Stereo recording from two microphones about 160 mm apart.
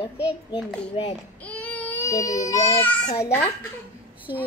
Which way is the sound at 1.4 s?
10° left (ahead or behind).